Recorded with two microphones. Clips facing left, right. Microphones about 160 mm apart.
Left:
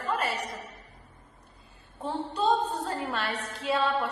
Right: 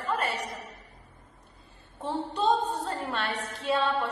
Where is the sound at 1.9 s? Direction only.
Centre (ahead or behind).